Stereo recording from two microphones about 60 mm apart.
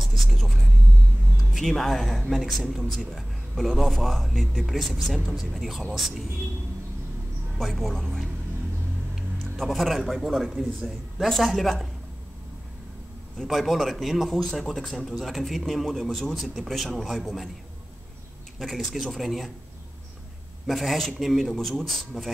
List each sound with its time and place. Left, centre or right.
0.0 s whispering: centre
1.3 s a man's voice: centre
7.5 s a man's voice: centre
9.4 s a man's voice: centre
13.4 s a man's voice: centre
18.6 s a man's voice: centre
20.6 s a man's voice: centre